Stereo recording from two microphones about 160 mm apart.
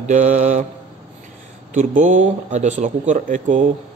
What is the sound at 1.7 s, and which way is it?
Speech, 50° right (ahead or behind).